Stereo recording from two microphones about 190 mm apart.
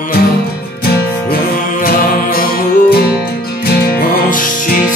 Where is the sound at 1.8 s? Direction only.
50° left (ahead or behind).